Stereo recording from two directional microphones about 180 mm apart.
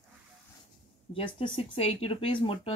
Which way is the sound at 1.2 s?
30° left (ahead or behind).